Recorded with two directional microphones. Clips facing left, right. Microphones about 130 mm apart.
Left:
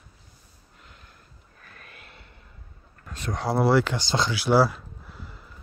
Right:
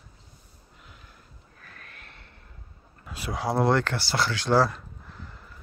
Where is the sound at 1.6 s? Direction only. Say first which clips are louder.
Left 1 dB; 5° left (ahead or behind).